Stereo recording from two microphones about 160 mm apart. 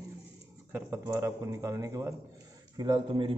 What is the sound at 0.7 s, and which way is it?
A man's voice, 20° right (ahead or behind).